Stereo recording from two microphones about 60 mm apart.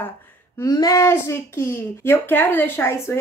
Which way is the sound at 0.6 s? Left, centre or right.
Left.